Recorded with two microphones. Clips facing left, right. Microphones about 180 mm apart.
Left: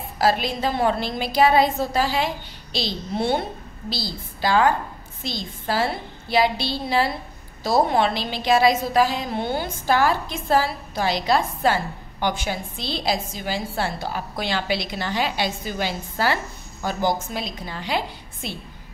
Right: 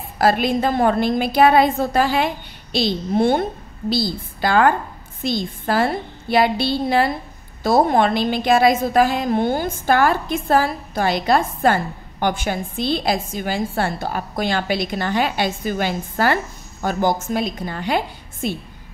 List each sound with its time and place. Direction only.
0.2 s a woman's voice: 55° right (ahead or behind)